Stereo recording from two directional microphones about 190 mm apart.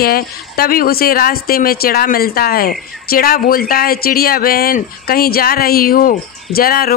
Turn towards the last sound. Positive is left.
turn(degrees=50)  # may be behind; listen again after turning